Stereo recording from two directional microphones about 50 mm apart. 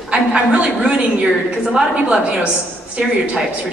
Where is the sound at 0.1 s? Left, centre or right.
Right.